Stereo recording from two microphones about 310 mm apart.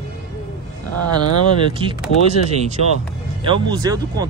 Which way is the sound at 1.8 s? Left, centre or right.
Centre.